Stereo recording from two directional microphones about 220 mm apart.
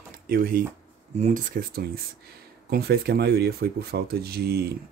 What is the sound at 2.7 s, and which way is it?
Speech, 45° right (ahead or behind).